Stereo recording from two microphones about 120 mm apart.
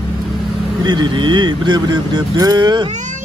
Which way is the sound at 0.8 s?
40° right (ahead or behind).